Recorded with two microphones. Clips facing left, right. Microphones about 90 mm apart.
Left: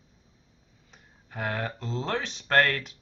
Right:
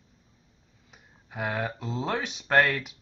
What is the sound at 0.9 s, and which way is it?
Speech, 5° right (ahead or behind).